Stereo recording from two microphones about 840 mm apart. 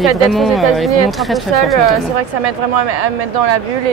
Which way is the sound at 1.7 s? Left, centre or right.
Right.